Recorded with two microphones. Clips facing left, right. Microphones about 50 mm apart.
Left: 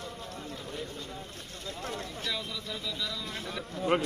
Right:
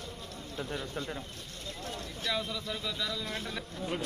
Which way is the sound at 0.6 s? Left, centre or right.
Right.